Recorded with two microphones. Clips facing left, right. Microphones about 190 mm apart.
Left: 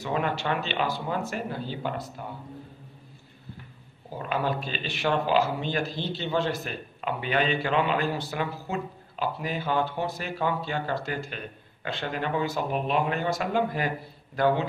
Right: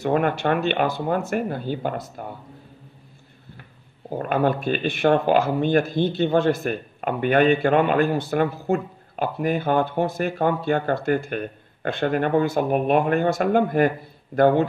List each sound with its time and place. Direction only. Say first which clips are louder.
0.0 s speech: right 7 dB; 55° right (ahead or behind)
4.1 s speech: right 7 dB; 55° right (ahead or behind)